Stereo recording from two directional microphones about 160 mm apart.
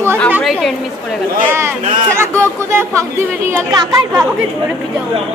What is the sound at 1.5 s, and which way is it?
A woman's voice, 15° right (ahead or behind).